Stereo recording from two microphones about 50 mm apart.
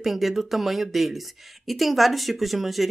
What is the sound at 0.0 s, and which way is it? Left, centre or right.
Speech, centre.